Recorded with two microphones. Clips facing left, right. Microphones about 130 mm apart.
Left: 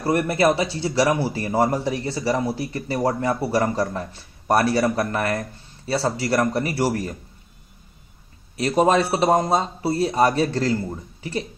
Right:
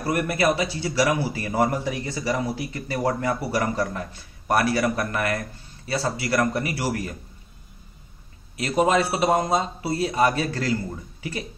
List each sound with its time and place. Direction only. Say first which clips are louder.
0.0 s speech: left 3 dB; 30° left (ahead or behind)
8.5 s speech: left 3 dB; 35° left (ahead or behind)